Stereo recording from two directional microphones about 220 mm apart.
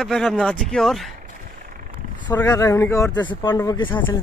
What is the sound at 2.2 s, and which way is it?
Speech, 15° left (ahead or behind).